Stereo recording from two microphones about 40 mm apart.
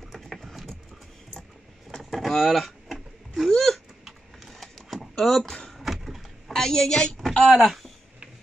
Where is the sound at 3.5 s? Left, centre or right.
Centre.